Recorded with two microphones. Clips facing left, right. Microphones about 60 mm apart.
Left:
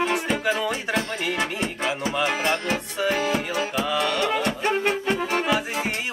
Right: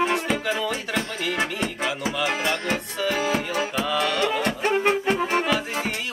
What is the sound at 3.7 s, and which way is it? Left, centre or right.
Music, centre.